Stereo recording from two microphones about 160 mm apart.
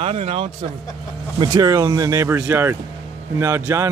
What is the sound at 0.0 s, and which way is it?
Speech, 40° right (ahead or behind).